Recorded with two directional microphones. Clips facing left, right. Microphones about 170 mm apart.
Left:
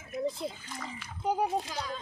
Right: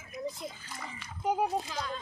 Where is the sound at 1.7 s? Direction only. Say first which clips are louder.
Even; 10° left (ahead or behind).